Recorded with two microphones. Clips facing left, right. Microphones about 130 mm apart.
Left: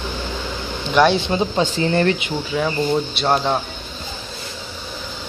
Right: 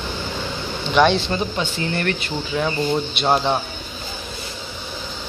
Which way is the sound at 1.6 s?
25° left (ahead or behind).